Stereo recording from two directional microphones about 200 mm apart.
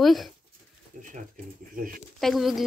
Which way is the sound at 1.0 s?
40° right (ahead or behind).